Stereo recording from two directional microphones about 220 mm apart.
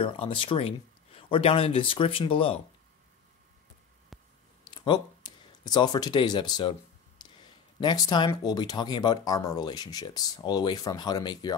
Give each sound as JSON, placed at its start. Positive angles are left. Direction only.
{"t": 0.0, "sound": "speech", "side_deg": 25}
{"t": 4.6, "sound": "speech", "side_deg": 20}
{"t": 7.2, "sound": "a sound", "side_deg": 20}
{"t": 7.8, "sound": "speech", "side_deg": 20}